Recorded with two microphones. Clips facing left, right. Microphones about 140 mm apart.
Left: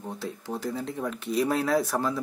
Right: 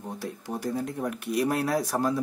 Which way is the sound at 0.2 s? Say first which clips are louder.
Even; 15° right (ahead or behind).